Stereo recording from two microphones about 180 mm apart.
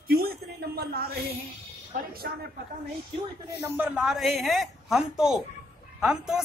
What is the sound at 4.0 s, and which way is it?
A woman's voice, centre (ahead or behind).